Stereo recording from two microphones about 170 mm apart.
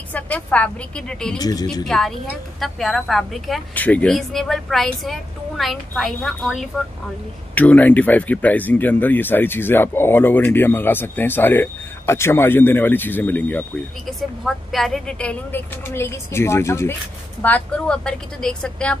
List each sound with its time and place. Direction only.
0.1 s speech: 10° left (ahead or behind)
1.4 s speech: 20° left (ahead or behind)
1.9 s speech: centre (ahead or behind)